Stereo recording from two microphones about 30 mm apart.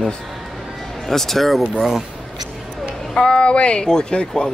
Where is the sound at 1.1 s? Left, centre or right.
Centre.